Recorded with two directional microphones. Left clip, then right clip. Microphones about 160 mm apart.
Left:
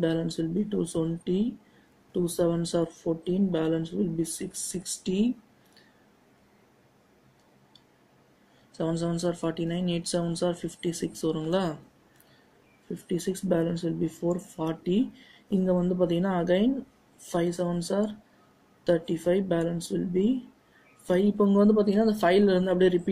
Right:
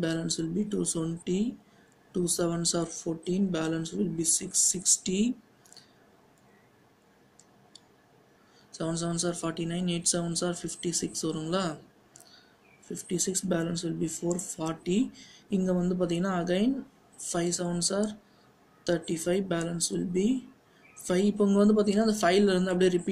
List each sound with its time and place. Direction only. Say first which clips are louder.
0.0 s speech: left 3 dB; 25° left (ahead or behind)
8.7 s speech: left 3 dB; 25° left (ahead or behind)
12.9 s speech: left 1 dB; 25° left (ahead or behind)